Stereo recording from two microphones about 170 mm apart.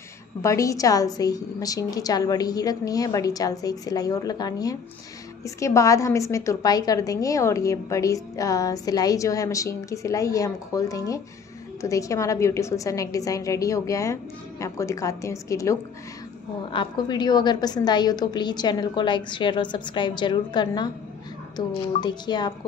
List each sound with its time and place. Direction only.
0.4 s a woman's voice: 20° left (ahead or behind)